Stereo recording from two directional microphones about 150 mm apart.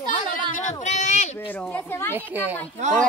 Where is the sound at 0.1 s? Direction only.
60° left (ahead or behind).